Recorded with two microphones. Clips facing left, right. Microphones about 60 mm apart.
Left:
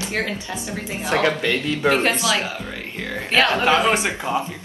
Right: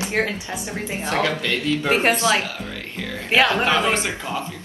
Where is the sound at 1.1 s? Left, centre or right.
Left.